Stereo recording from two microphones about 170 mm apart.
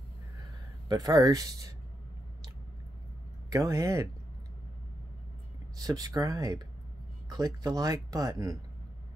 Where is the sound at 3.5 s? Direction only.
20° right (ahead or behind).